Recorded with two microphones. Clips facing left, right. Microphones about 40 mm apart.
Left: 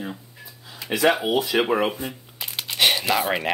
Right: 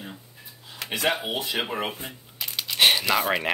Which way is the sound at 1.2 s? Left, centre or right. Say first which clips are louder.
Left 7 dB; left.